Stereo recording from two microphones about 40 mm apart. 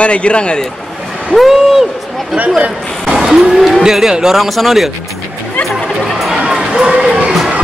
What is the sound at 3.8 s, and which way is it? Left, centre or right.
Speech, centre.